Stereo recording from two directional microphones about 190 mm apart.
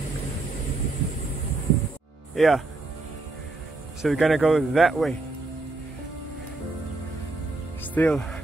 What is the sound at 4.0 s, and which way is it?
Speech, centre (ahead or behind).